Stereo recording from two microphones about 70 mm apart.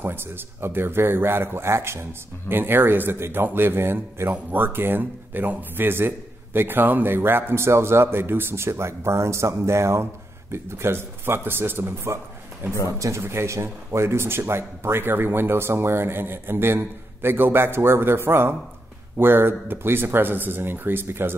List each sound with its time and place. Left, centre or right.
0.0 s speech: right